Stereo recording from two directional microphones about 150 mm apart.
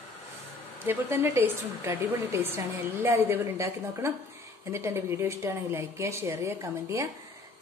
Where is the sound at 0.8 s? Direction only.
15° right (ahead or behind).